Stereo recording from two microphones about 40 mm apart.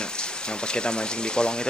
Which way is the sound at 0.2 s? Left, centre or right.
Left.